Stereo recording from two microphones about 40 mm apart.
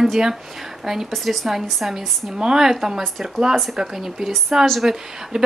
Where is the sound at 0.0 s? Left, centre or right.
Centre.